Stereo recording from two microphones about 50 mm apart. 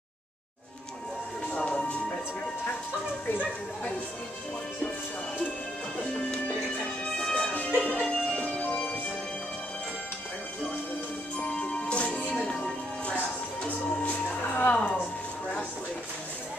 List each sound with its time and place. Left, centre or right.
1.5 s music: left
3.3 s a sound: left
6.8 s music: centre
11.3 s music: left
13.7 s music: left